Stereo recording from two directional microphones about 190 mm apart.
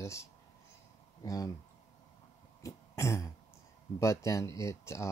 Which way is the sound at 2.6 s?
15° left (ahead or behind).